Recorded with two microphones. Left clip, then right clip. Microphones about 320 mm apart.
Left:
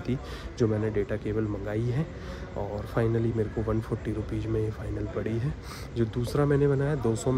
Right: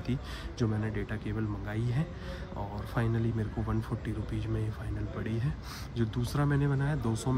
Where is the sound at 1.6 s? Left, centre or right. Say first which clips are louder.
Left 6 dB; centre.